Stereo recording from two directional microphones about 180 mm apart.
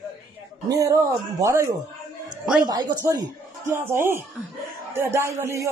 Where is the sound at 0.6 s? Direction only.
20° right (ahead or behind).